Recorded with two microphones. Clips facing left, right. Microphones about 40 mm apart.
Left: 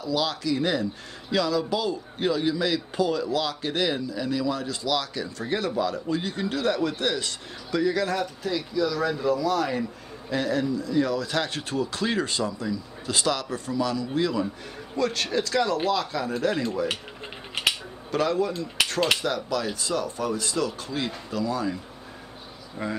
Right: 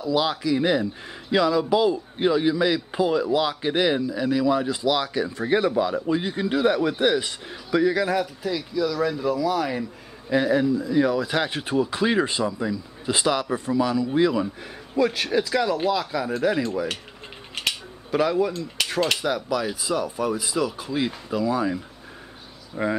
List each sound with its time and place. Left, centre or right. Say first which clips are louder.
0.0 s a man's voice: right 4 dB; centre
17.6 s mechanisms: left 2 dB; centre
18.1 s a man's voice: right 3 dB; centre
18.5 s speech: left 1 dB; centre
19.2 s a man's voice: right 2 dB; centre
22.8 s a man's voice: right 6 dB; centre